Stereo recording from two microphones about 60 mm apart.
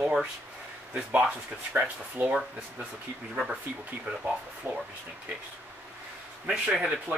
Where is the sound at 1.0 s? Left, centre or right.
Centre.